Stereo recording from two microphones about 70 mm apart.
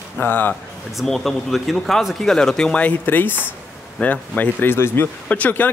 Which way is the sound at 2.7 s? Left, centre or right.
Left.